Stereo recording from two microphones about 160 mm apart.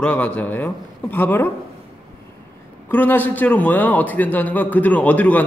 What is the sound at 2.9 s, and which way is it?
A man's voice, 10° left (ahead or behind).